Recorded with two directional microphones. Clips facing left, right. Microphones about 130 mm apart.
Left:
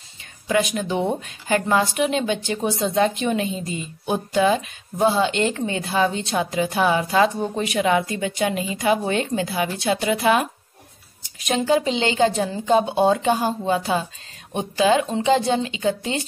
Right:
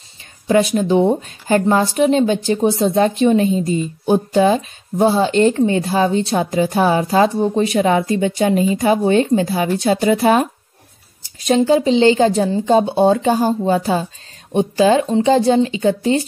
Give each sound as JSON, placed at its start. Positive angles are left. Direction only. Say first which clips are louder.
{"t": 0.5, "sound": "speech", "louder": "right 7 dB", "side_deg": -35}